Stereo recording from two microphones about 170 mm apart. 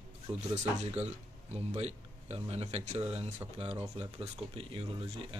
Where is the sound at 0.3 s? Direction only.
25° right (ahead or behind).